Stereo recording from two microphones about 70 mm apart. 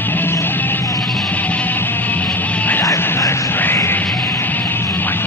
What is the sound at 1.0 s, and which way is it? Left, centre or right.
Music, centre.